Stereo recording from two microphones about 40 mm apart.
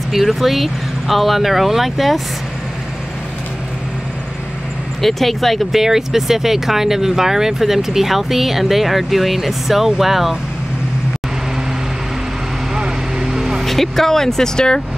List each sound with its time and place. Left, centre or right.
0.1 s speech: centre
5.0 s speech: centre
5.8 s speech: centre
12.7 s vehicle: centre
13.3 s vehicle: centre
13.7 s speech: centre